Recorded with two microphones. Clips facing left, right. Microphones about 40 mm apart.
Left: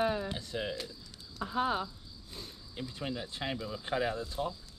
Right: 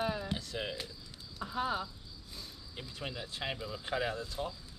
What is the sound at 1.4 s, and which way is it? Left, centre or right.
Speech, left.